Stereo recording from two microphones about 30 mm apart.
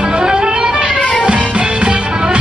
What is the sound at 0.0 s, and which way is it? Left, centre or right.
Music, right.